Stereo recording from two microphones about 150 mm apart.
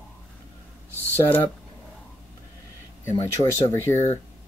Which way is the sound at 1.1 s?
10° left (ahead or behind).